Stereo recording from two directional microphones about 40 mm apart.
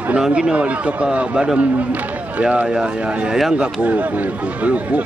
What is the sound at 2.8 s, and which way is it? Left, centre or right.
Speech, right.